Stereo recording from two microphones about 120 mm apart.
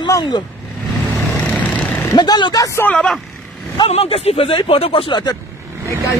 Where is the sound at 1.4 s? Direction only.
10° left (ahead or behind).